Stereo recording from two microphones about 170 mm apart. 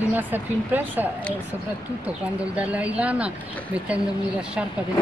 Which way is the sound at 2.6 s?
10° right (ahead or behind).